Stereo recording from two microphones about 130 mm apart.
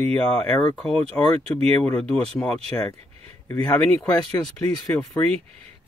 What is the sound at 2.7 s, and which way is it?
Speech, 25° left (ahead or behind).